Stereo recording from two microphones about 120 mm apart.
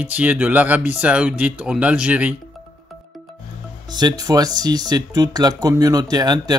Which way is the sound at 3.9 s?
35° right (ahead or behind).